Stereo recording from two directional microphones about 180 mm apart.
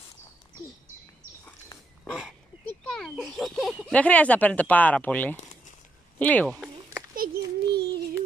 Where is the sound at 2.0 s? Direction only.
Centre (ahead or behind).